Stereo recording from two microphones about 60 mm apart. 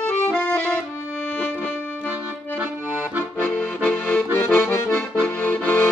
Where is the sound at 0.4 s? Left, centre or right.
Left.